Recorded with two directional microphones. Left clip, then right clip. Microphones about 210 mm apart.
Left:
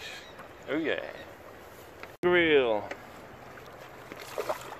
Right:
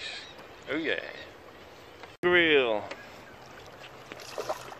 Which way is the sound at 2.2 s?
5° right (ahead or behind).